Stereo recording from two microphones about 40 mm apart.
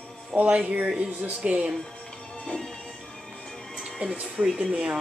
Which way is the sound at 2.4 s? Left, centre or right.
Centre.